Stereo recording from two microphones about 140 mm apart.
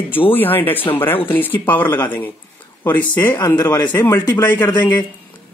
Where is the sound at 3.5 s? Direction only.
25° left (ahead or behind).